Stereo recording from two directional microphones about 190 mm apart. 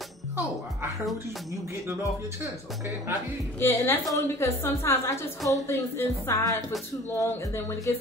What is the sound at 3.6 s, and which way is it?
Speech, 15° left (ahead or behind).